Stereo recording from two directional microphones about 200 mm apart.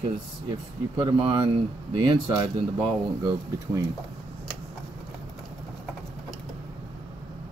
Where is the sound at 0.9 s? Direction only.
25° right (ahead or behind).